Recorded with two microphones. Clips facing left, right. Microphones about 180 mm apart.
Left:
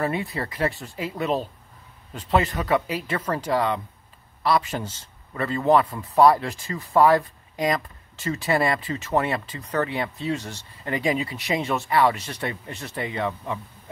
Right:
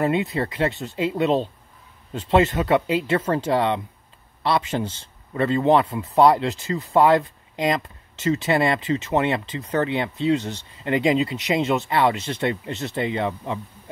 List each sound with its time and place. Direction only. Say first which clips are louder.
0.0 s a man's voice: right 5 dB; 20° right (ahead or behind)